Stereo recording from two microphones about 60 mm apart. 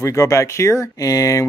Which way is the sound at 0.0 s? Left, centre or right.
Left.